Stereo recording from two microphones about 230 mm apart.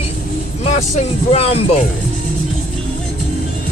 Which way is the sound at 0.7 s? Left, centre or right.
Left.